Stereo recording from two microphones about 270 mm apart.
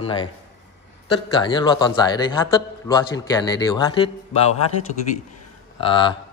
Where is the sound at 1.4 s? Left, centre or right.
Centre.